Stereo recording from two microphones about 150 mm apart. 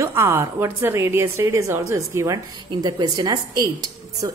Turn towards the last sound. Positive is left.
turn(degrees=-25)  # may be behind; listen again after turning